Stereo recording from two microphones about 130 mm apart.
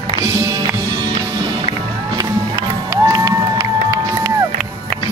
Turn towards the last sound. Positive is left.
turn(degrees=-25)  # may be behind; listen again after turning